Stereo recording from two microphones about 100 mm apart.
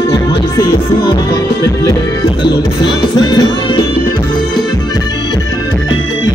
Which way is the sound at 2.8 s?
45° left (ahead or behind).